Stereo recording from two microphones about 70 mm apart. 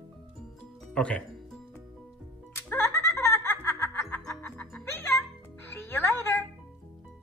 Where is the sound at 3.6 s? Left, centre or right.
Left.